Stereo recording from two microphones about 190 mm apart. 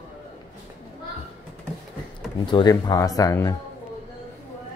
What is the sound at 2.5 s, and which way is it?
Speech, 25° left (ahead or behind).